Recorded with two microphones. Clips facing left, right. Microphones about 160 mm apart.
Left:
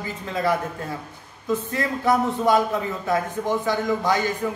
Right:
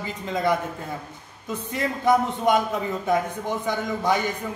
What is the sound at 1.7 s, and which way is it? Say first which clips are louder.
A man's voice: right 2 dB; 20° right (ahead or behind).